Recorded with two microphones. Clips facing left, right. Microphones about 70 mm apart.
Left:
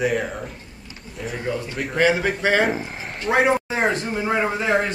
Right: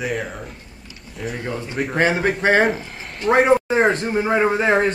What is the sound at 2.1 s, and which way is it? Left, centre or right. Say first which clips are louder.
Speech: right 2 dB; right.